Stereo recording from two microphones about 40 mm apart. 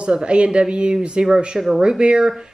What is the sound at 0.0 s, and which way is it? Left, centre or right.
Speech, right.